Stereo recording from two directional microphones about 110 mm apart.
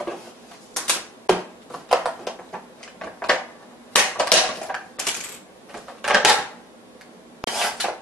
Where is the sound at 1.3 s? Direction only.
Centre (ahead or behind).